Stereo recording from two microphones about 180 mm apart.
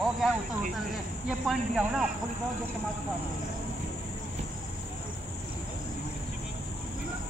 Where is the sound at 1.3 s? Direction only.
Centre (ahead or behind).